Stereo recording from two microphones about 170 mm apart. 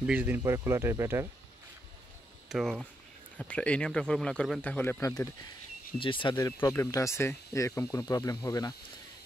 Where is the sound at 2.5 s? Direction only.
Centre (ahead or behind); by 5.3 s 15° left (ahead or behind).